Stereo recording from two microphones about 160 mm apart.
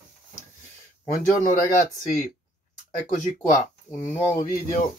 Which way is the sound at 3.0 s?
55° left (ahead or behind).